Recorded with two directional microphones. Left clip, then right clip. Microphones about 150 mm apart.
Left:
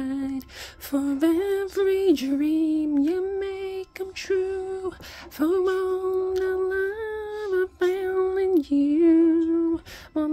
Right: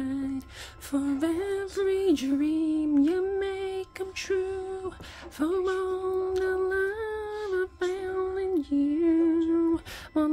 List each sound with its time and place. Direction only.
0.0 s a sound: 40° left (ahead or behind)
0.9 s female singing: 55° left (ahead or behind); by 2.9 s 35° left (ahead or behind)
2.9 s female singing: 20° left (ahead or behind)
4.2 s female singing: 30° left (ahead or behind)
6.1 s humming: 25° left (ahead or behind)
9.5 s a sound: 5° left (ahead or behind)